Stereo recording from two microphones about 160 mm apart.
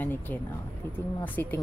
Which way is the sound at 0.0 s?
10° left (ahead or behind).